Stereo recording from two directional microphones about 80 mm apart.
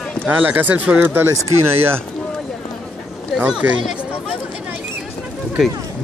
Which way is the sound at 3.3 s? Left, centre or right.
Centre.